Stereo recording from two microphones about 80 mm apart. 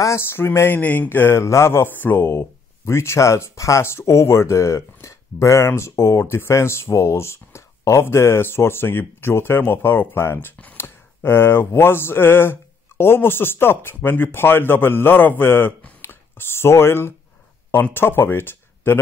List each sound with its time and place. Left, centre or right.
0.0 s speech: left